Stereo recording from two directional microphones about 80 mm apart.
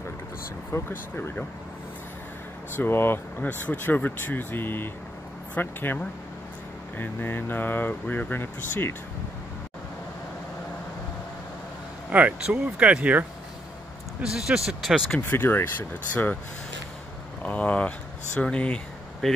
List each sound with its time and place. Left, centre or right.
0.7 s speech: left
2.7 s speech: left
7.0 s speech: left
12.1 s speech: centre
14.2 s speech: centre
15.2 s speech: left
17.4 s speech: centre